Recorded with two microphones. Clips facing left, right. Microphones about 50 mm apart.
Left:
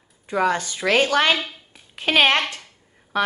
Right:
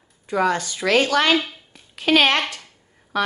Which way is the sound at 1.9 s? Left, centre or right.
Left.